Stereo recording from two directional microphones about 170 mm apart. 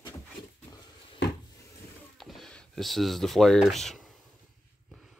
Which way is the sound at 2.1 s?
Centre (ahead or behind).